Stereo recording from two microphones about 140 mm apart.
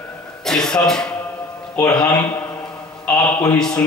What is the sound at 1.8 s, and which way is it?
Speech, 25° left (ahead or behind).